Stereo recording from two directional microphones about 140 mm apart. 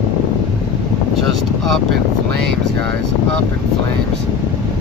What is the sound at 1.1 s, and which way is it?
Speech, centre (ahead or behind).